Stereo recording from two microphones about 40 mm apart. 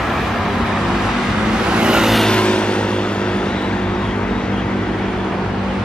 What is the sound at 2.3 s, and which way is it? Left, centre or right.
Vehicle, left.